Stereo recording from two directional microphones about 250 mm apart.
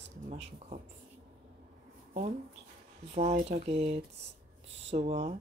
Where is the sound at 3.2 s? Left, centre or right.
Right.